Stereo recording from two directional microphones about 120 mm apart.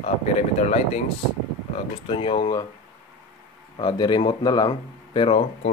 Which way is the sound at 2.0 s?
50° left (ahead or behind).